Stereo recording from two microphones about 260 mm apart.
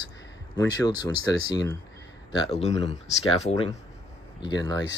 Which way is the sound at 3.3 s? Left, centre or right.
Left.